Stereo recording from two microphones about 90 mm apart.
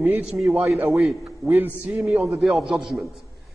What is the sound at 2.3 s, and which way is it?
Speech, centre (ahead or behind).